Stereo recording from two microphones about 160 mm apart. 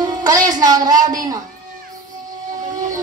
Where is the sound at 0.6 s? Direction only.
25° right (ahead or behind).